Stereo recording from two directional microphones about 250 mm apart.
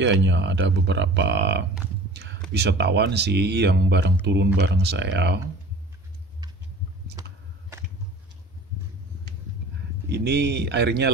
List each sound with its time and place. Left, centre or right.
0.0 s speech: right
7.2 s a sound: centre
10.0 s speech: right